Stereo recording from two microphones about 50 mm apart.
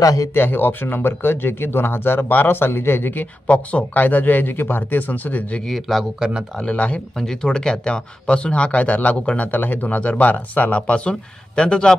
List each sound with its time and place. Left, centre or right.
0.3 s speech: left
3.4 s speech: left
5.7 s speech: centre
6.1 s speech: centre
6.6 s speech: left